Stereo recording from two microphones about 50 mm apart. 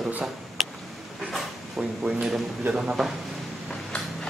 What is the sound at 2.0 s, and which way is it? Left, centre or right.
Speech, centre.